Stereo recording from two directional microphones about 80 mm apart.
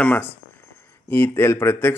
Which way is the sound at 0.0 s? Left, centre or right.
Left.